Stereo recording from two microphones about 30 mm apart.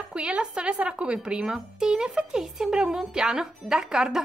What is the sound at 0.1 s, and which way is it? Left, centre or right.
A woman's voice, right.